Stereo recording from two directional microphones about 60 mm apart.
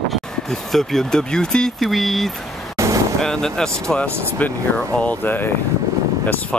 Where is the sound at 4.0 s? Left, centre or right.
Left.